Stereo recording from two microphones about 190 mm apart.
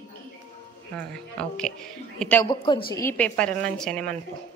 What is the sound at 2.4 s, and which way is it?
Speech, 25° left (ahead or behind).